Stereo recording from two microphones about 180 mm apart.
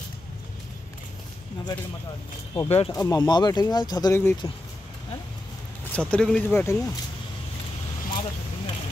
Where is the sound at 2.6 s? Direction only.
35° left (ahead or behind).